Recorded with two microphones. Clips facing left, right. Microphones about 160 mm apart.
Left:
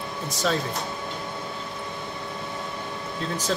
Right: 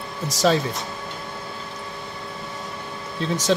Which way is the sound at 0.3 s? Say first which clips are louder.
Right 7 dB; 90° right.